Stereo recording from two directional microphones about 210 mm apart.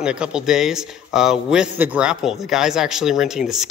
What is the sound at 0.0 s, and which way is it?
Speech, 5° right (ahead or behind).